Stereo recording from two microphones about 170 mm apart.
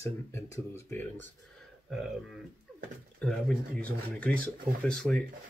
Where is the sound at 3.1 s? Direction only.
5° left (ahead or behind).